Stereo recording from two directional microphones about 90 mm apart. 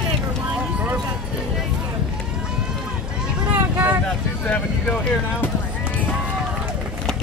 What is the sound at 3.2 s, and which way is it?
Vehicle, 15° right (ahead or behind).